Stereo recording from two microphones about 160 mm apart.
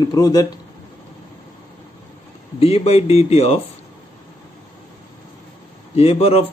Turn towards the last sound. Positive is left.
turn(degrees=40)  # may be behind; listen again after turning